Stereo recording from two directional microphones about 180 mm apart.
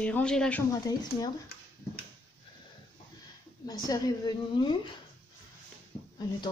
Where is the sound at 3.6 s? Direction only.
20° left (ahead or behind).